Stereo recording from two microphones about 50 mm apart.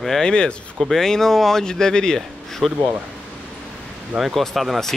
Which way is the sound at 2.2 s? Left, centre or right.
Centre.